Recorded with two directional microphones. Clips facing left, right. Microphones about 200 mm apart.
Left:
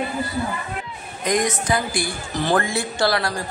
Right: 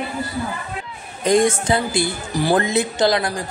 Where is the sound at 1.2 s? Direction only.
30° right (ahead or behind).